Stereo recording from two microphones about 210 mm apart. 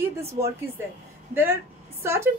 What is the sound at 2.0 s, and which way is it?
Speech, 10° right (ahead or behind).